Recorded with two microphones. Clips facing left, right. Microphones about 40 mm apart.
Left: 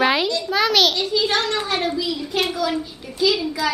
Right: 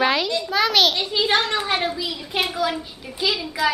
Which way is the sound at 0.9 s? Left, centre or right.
Right.